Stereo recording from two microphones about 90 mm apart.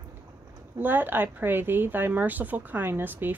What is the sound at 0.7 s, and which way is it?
A woman's voice, 20° right (ahead or behind).